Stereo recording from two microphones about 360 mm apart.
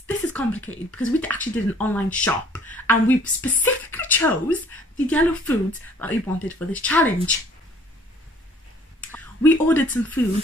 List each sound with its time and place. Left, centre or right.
0.0 s a sound: centre
0.9 s a woman's voice: centre
9.1 s speech: centre